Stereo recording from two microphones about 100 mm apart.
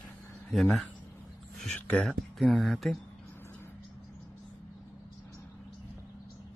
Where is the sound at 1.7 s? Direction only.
15° left (ahead or behind).